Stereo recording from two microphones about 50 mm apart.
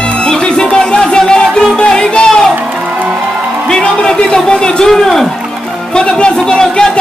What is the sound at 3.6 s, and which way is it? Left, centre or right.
Music, centre.